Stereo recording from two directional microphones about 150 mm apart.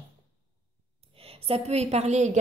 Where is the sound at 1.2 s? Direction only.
40° right (ahead or behind).